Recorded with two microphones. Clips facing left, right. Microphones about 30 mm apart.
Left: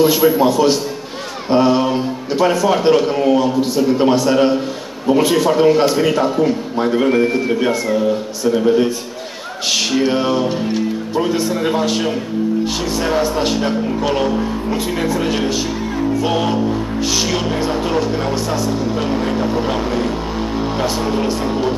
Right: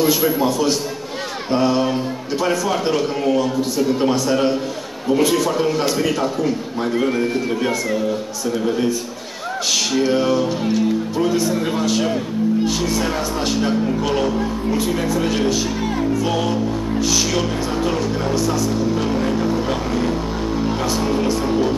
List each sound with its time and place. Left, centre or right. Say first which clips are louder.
0.0 s speech: left 5 dB; centre